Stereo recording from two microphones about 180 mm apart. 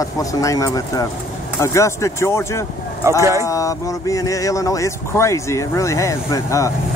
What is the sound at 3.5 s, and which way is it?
Speech, 20° left (ahead or behind).